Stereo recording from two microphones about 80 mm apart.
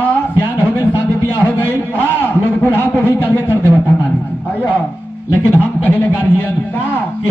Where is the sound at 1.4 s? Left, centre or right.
Left.